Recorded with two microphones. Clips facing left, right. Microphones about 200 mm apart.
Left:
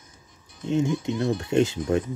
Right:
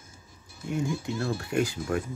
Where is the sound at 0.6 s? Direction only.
20° left (ahead or behind).